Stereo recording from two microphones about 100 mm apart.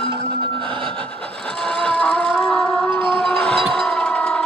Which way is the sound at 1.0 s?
10° left (ahead or behind).